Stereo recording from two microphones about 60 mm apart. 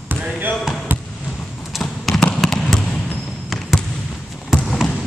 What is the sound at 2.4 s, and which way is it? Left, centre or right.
Trickle, centre.